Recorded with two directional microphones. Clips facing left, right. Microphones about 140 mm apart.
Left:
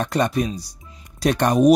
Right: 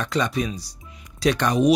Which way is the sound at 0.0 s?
50° left (ahead or behind).